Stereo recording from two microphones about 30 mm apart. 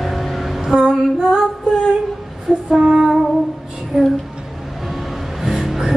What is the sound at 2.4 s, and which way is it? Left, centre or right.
Female singing, centre.